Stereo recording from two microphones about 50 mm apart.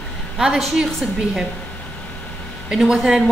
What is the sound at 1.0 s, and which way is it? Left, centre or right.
Speech, centre.